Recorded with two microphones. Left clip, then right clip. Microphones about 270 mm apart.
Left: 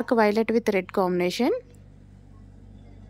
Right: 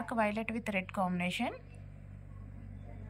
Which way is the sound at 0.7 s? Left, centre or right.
Centre.